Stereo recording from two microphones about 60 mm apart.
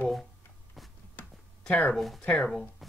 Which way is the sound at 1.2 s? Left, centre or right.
Left.